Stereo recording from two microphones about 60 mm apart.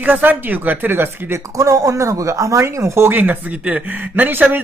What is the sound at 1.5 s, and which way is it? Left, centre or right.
Speech, right.